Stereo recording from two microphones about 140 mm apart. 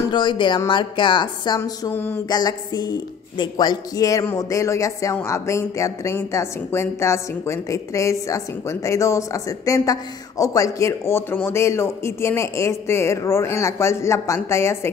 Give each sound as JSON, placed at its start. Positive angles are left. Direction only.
{"t": 0.1, "sound": "a woman's voice", "side_deg": 35}
{"t": 1.6, "sound": "a sound", "side_deg": 15}
{"t": 2.2, "sound": "speech", "side_deg": 30}